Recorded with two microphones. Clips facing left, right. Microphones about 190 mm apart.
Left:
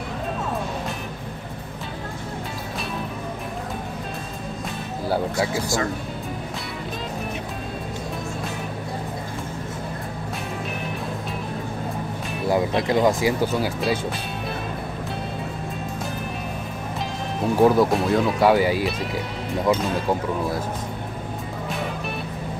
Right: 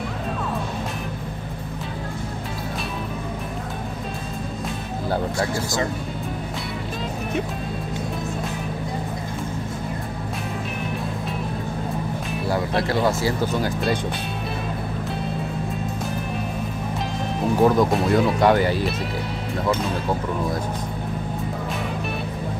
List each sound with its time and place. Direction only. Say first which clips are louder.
5.1 s speech: left 1 dB; 5° left (ahead or behind)
12.4 s speech: left 3 dB; 20° left (ahead or behind)
17.4 s speech: left 1 dB; 5° left (ahead or behind)